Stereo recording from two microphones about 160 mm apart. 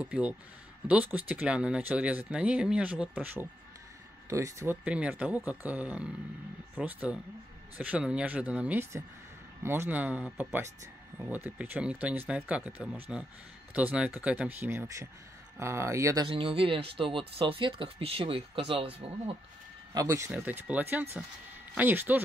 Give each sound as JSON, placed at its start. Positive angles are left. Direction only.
{"t": 0.0, "sound": "speech", "side_deg": -10}
{"t": 4.8, "sound": "speech", "side_deg": -5}
{"t": 16.3, "sound": "speech", "side_deg": -35}
{"t": 19.9, "sound": "speech", "side_deg": -20}